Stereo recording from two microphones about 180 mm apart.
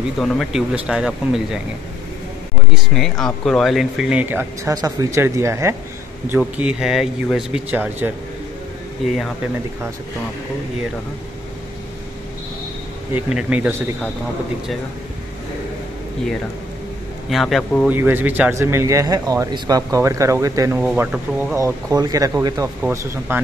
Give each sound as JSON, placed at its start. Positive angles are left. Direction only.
{"t": 0.2, "sound": "speech", "side_deg": 0}
{"t": 2.7, "sound": "speech", "side_deg": 0}
{"t": 13.1, "sound": "speech", "side_deg": -5}
{"t": 17.3, "sound": "speech", "side_deg": 0}
{"t": 17.9, "sound": "speech", "side_deg": -10}
{"t": 20.8, "sound": "speech", "side_deg": -5}
{"t": 21.5, "sound": "speech", "side_deg": -20}